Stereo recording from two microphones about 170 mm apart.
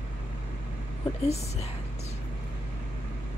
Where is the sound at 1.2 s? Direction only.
40° left (ahead or behind).